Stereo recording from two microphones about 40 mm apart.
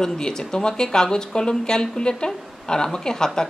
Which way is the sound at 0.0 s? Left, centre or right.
Centre.